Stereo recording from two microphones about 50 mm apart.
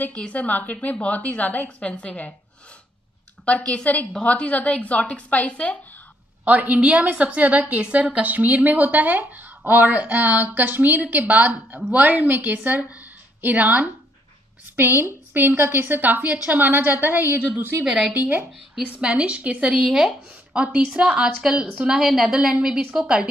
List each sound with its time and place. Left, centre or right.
0.3 s a woman's voice: left
1.8 s a woman's voice: left
3.4 s a woman's voice: left
6.4 s a woman's voice: right
14.8 s a woman's voice: right
17.8 s a woman's voice: centre
18.1 s a woman's voice: right
18.8 s speech: centre
19.7 s a woman's voice: centre